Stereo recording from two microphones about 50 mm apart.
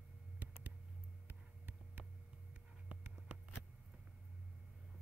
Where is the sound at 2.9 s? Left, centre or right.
Centre.